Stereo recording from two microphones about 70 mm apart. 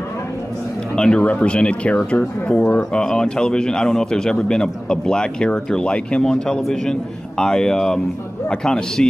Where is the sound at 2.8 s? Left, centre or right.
Centre.